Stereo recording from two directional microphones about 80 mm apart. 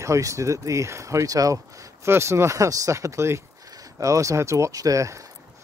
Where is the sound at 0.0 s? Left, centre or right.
Right.